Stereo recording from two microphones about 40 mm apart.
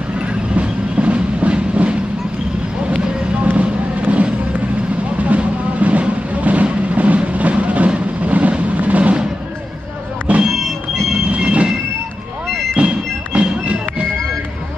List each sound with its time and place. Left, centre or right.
0.2 s train: right
3.5 s a sound: right
5.2 s vehicle: right
7.3 s a sound: right
10.3 s vehicle: right
11.2 s train: right
12.7 s music: right